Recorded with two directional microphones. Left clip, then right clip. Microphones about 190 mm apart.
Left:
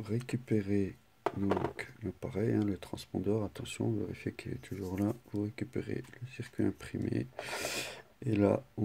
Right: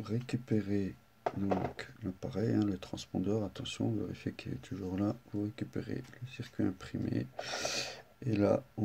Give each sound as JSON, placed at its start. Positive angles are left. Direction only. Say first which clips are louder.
{"t": 0.0, "sound": "speech", "louder": "left 1 dB", "side_deg": 35}